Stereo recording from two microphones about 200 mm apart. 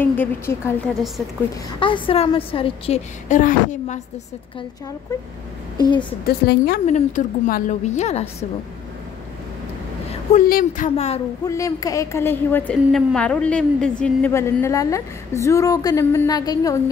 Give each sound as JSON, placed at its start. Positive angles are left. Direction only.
{"t": 0.0, "sound": "a woman's voice", "side_deg": 10}
{"t": 1.8, "sound": "a woman's voice", "side_deg": 25}
{"t": 5.8, "sound": "a woman's voice", "side_deg": 25}
{"t": 6.2, "sound": "a woman's voice", "side_deg": 50}
{"t": 6.9, "sound": "a woman's voice", "side_deg": 40}
{"t": 10.3, "sound": "a woman's voice", "side_deg": 40}
{"t": 11.4, "sound": "a woman's voice", "side_deg": 15}